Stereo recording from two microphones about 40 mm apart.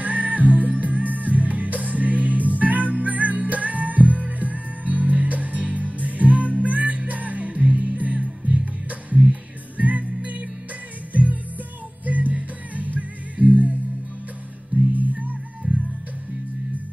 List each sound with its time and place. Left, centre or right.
0.0 s music: right
12.1 s music: right
15.0 s music: right